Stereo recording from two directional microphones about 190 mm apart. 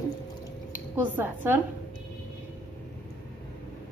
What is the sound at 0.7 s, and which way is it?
Speech, 10° right (ahead or behind).